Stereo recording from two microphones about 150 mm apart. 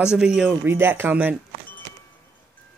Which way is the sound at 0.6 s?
15° right (ahead or behind).